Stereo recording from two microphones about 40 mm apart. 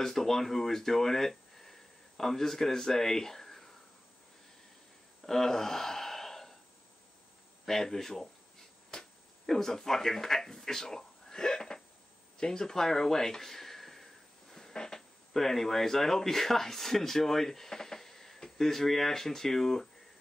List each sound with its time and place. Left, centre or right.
0.0 s speech: centre
5.2 s gasp: centre
7.6 s speech: centre
8.9 s a sound: centre
9.5 s speech: centre